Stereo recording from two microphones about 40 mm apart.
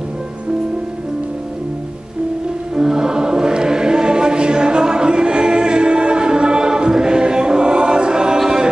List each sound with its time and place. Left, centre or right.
2.7 s choir: centre